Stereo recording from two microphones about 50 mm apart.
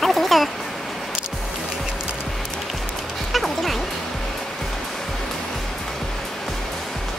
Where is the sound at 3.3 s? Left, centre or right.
Centre.